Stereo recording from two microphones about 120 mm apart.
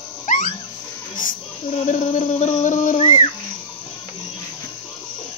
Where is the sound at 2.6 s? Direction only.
90° left.